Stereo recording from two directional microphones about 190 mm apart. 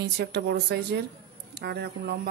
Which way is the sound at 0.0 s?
60° right (ahead or behind).